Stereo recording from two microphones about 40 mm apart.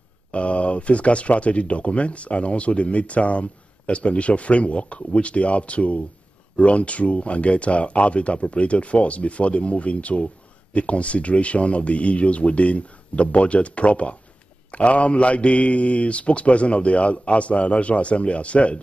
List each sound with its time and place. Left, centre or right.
0.3 s speech: left